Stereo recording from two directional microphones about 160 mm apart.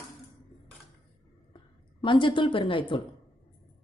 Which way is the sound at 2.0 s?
30° left (ahead or behind).